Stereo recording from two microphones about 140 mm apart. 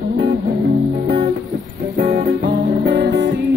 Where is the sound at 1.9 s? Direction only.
60° right (ahead or behind).